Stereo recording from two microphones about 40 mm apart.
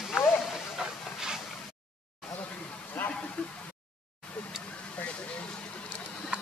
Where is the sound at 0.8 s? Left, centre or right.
Centre.